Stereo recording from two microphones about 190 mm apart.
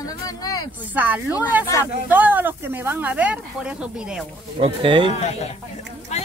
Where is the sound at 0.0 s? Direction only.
20° left (ahead or behind).